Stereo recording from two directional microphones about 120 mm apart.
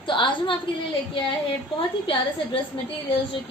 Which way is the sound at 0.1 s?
45° left (ahead or behind).